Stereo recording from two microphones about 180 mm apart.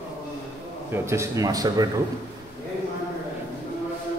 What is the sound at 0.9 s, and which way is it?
Speech, 15° right (ahead or behind).